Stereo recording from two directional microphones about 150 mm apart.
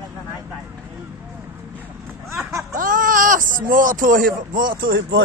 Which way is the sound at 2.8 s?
65° right (ahead or behind).